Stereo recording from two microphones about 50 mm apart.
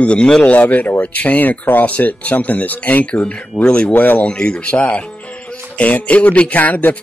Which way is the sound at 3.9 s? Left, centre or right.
Left.